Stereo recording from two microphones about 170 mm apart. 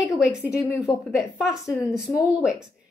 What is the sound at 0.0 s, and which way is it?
A woman's voice, 5° right (ahead or behind).